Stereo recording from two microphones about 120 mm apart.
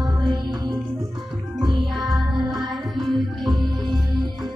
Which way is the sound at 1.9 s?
Centre (ahead or behind).